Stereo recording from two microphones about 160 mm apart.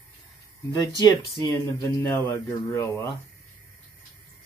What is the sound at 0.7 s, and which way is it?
Speech, 25° left (ahead or behind).